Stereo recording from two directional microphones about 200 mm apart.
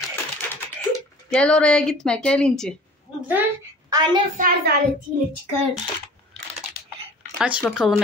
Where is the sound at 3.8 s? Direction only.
20° right (ahead or behind).